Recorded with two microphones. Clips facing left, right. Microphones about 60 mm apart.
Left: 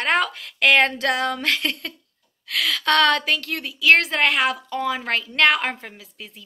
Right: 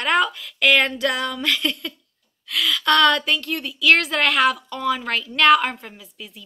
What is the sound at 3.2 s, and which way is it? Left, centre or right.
Speech, left.